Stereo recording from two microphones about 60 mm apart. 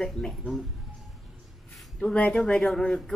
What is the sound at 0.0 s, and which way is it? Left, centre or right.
Speech, centre.